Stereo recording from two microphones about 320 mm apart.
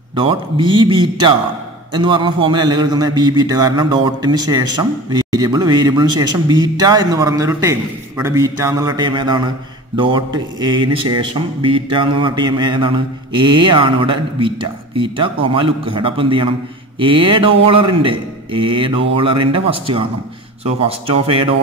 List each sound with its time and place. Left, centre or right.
0.1 s a man's voice: centre